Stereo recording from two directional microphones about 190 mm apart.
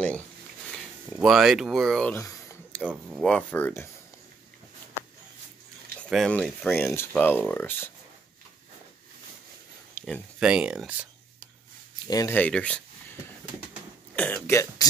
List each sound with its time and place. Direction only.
1.1 s speech: centre (ahead or behind)
2.1 s a sound: 15° left (ahead or behind)
2.8 s speech: 5° right (ahead or behind)
6.0 s speech: 5° left (ahead or behind)
9.9 s a sound: 10° left (ahead or behind)
10.4 s speech: 5° right (ahead or behind)
12.1 s speech: 15° left (ahead or behind)
14.1 s speech: 10° left (ahead or behind)